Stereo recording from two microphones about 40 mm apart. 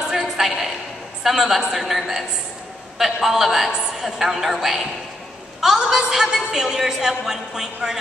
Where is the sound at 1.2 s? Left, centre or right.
Centre.